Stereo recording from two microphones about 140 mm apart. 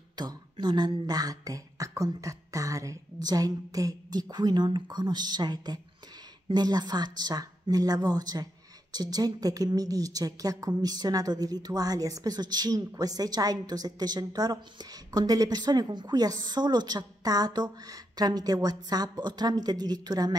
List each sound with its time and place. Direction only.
0.1 s a woman's voice: 30° right (ahead or behind)